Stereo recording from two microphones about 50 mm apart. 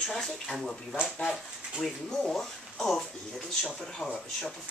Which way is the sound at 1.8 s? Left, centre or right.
Centre.